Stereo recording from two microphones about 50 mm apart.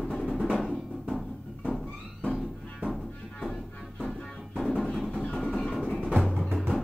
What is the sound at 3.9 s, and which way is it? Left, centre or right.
Music, centre.